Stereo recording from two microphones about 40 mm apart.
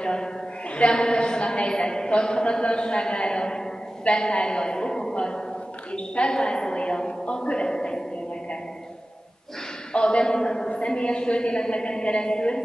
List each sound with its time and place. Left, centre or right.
0.0 s a woman's voice: centre
9.9 s a woman's voice: left